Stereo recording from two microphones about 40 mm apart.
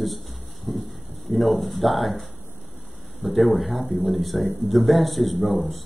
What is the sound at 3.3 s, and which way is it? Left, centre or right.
Speech, centre.